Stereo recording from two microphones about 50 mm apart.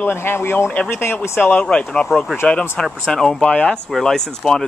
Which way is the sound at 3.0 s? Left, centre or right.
Centre.